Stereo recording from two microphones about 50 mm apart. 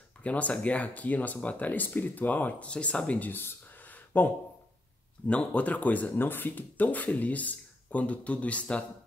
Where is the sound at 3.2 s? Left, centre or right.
Left.